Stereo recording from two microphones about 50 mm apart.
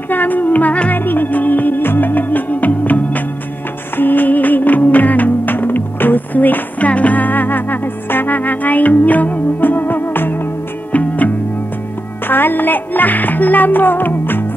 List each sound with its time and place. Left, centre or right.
0.1 s music: left
10.9 s music: left
12.3 s music: left